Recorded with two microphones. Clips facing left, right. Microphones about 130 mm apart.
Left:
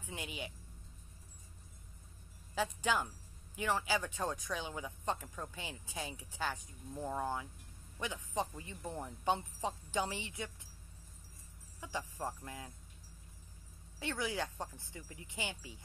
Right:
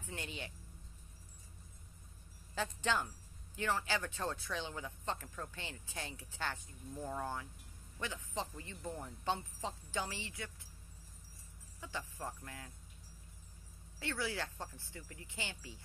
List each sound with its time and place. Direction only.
0.0 s speech: 10° left (ahead or behind)
2.5 s speech: 10° left (ahead or behind)
11.8 s speech: 15° left (ahead or behind)
13.9 s speech: 20° left (ahead or behind)